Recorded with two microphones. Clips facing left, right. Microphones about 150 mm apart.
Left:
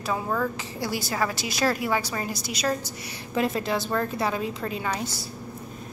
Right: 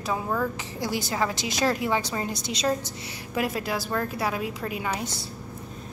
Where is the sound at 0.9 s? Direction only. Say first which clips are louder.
Right 1 dB; 15° right (ahead or behind).